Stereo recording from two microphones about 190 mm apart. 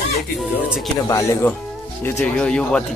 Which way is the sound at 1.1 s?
20° left (ahead or behind).